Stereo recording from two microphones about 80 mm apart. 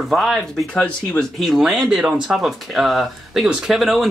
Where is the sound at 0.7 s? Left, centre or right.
Centre.